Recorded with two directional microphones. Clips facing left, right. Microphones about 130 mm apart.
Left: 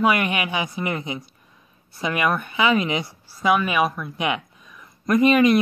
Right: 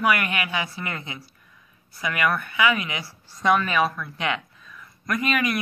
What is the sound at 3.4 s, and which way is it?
Speech, 10° left (ahead or behind).